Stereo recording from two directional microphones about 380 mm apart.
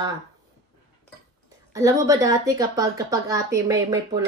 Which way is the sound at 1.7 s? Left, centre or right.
Centre.